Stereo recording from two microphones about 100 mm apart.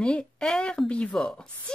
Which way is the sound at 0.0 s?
10° left (ahead or behind).